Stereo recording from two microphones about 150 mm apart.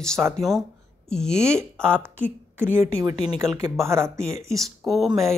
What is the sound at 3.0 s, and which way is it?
Speech, 25° right (ahead or behind).